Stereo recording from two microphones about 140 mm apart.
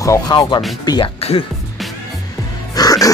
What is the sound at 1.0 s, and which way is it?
Speech, 45° left (ahead or behind).